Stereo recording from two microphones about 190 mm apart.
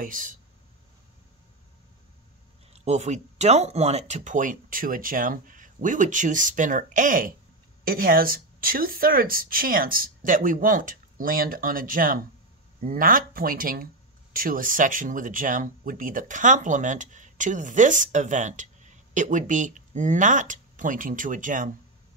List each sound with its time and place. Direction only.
0.0 s speech: 45° right (ahead or behind)
2.7 s speech: 35° right (ahead or behind)